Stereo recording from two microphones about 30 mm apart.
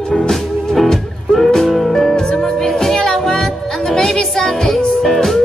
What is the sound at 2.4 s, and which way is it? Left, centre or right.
Music, centre.